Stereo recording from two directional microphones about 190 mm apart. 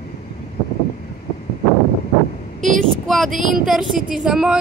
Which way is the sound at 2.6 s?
40° right (ahead or behind).